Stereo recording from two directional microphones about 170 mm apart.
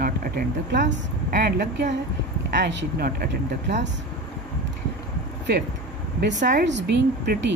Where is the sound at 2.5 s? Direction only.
90° right.